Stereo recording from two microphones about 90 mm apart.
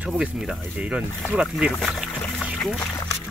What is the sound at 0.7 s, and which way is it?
Speech, 10° right (ahead or behind).